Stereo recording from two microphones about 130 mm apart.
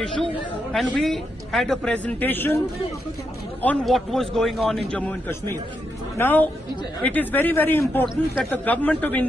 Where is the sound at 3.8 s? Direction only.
Centre (ahead or behind).